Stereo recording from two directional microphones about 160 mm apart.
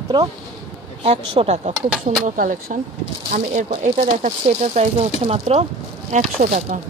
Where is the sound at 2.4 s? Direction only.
60° right (ahead or behind).